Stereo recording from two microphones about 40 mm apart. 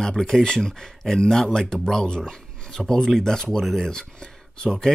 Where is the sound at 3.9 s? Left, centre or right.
Centre.